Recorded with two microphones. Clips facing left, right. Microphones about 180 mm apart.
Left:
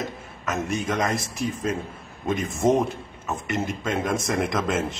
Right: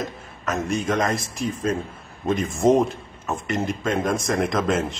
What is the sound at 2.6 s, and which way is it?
Speech, 20° right (ahead or behind).